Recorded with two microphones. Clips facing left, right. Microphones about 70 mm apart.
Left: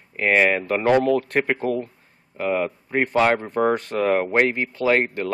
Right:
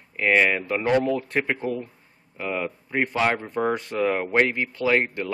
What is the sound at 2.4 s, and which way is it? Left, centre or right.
Speech, left.